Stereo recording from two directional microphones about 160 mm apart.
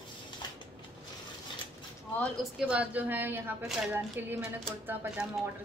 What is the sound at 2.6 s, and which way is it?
A woman's voice, 5° right (ahead or behind).